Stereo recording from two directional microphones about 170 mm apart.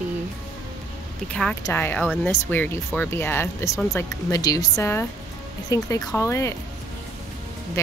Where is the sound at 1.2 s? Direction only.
5° left (ahead or behind).